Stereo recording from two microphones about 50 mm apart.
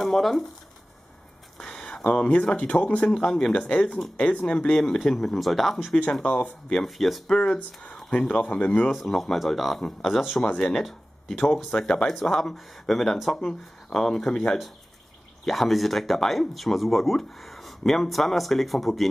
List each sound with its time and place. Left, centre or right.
0.0 s speech: centre
1.6 s a sound: centre
2.5 s speech: left
3.1 s speech: centre
4.7 s speech: centre
6.2 s speech: left
6.7 s speech: centre
7.4 s speech: left
8.9 s speech: centre